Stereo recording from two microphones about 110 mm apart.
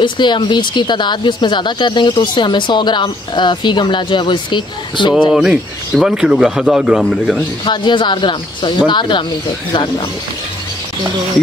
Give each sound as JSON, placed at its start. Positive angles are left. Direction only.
{"t": 0.0, "sound": "a woman's voice", "side_deg": 45}
{"t": 5.3, "sound": "speech", "side_deg": -5}
{"t": 7.6, "sound": "a woman's voice", "side_deg": 45}